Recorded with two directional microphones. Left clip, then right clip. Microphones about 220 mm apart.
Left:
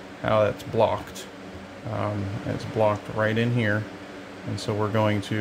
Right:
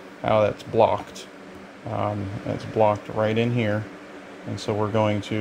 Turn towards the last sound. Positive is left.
turn(degrees=-15)  # may be behind; listen again after turning